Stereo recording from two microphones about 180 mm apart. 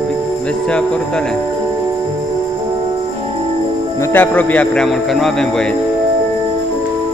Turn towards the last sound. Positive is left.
turn(degrees=5)  # may be behind; listen again after turning